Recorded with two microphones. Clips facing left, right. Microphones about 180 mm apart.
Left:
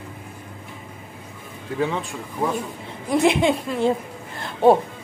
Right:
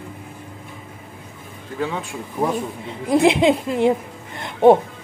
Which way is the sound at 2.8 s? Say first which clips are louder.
Right 3 dB; 20° right (ahead or behind).